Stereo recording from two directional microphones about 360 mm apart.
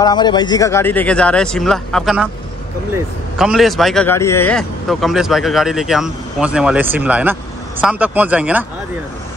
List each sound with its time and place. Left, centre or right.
0.0 s a man's voice: centre